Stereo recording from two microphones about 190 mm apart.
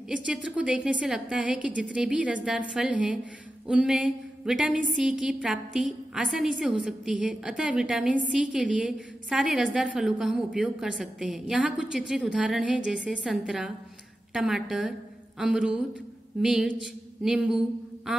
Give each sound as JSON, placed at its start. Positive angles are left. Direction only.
{"t": 0.1, "sound": "a woman's voice", "side_deg": -5}